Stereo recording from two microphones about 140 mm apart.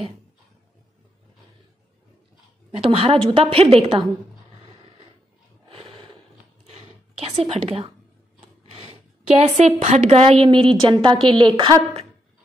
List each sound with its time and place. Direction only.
2.7 s a woman's voice: 40° right (ahead or behind)
5.7 s a sound: 40° right (ahead or behind)
7.5 s a woman's voice: 45° right (ahead or behind)
8.4 s rub: 35° right (ahead or behind)
9.4 s a woman's voice: 50° right (ahead or behind); by 11.8 s 35° right (ahead or behind)